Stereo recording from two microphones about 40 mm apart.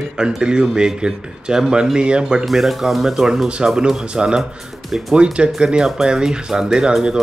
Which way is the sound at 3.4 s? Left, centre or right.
Right.